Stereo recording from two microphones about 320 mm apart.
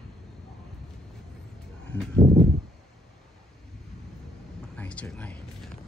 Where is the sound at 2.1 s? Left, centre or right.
Centre.